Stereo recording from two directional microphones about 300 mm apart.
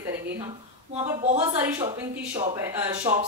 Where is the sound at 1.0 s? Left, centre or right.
Right.